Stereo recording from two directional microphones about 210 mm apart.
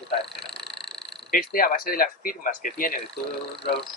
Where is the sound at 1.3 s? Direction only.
45° left (ahead or behind).